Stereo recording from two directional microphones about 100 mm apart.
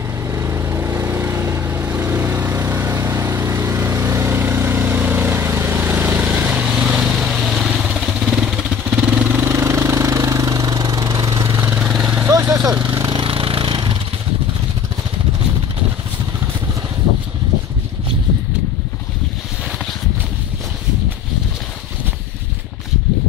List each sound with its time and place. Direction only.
0.3 s vehicle: 30° right (ahead or behind)
11.5 s vehicle: 20° right (ahead or behind)
12.3 s vehicle: 30° right (ahead or behind)
13.1 s a sound: 65° right (ahead or behind)